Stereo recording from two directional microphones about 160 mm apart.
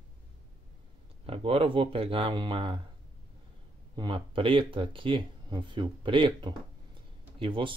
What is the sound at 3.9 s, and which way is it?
Speech, 30° right (ahead or behind).